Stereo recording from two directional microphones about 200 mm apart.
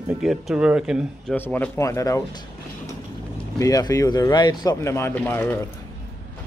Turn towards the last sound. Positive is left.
turn(degrees=10)  # may be behind; listen again after turning